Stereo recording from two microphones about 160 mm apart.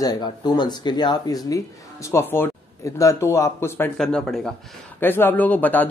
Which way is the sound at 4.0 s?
5° left (ahead or behind).